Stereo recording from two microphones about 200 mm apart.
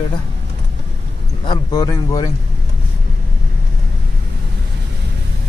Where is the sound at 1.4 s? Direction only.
20° left (ahead or behind).